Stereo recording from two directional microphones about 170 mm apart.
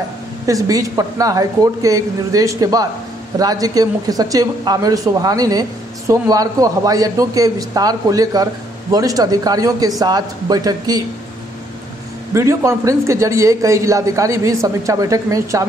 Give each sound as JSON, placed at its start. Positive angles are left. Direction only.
{"t": 0.5, "sound": "a woman's voice", "side_deg": -20}
{"t": 12.4, "sound": "a woman's voice", "side_deg": -15}